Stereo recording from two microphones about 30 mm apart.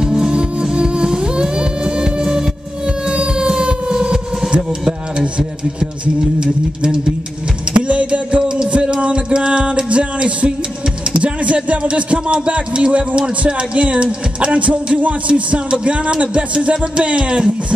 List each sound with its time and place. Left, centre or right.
0.0 s music: right
3.1 s a sound: right
6.4 s speech: right
7.7 s music: right
8.9 s speech: right
16.5 s speech: right
17.2 s speech: right